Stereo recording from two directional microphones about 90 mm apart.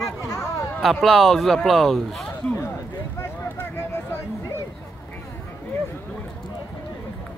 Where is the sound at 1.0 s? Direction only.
Centre (ahead or behind).